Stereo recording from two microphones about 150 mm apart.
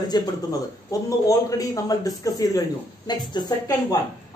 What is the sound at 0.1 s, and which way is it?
Speech, 25° left (ahead or behind).